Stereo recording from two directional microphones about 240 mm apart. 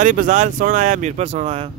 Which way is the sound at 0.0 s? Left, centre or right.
Right.